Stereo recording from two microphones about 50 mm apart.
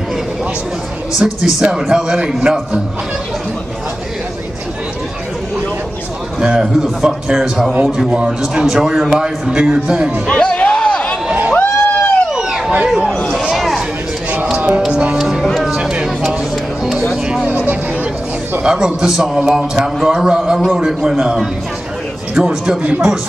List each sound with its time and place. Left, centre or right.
1.2 s a man's voice: centre
6.4 s a man's voice: centre
10.2 s music: centre
11.5 s a sound: left
12.4 s a sound: centre
14.9 s a man's voice: right
15.8 s music: centre
17.5 s a sound: right
18.6 s a man's voice: centre